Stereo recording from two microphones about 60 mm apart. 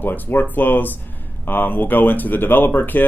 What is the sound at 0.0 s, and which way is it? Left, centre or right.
Speech, left.